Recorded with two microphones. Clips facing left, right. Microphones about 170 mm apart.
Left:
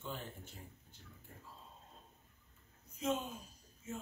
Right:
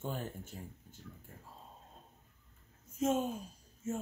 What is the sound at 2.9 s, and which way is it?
Speech, 45° right (ahead or behind).